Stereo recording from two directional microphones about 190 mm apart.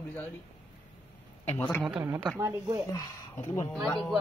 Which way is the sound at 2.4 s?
20° right (ahead or behind).